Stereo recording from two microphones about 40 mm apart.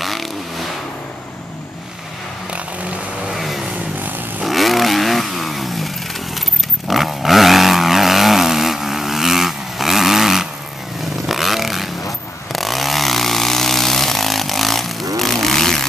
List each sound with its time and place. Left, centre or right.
0.0 s vehicle: centre
3.3 s vehicle: centre
4.0 s motorcycle: right
4.4 s vehicle: centre
6.9 s vehicle: centre
11.2 s motorcycle: centre
12.5 s vehicle: centre